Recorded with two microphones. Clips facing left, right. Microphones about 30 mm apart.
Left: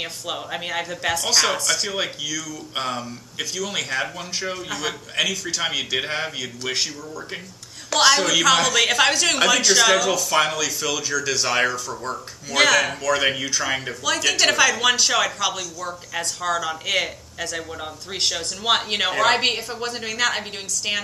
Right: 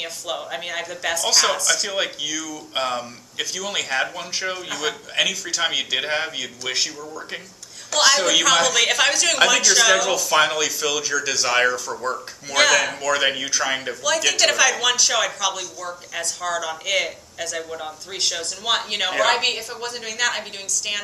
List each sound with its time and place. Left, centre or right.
0.0 s a woman's voice: centre
1.2 s a man's voice: centre
1.9 s a man's voice: centre
3.9 s speech: centre
4.6 s a man's voice: centre
7.9 s a man's voice: centre
10.0 s a man's voice: centre
12.5 s a woman's voice: centre
13.1 s a man's voice: centre
14.0 s a woman's voice: centre